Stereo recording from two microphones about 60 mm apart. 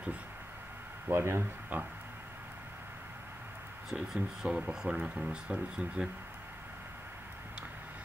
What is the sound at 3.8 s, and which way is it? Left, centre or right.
Speech, centre.